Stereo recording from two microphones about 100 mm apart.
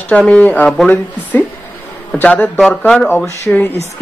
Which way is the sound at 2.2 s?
15° left (ahead or behind).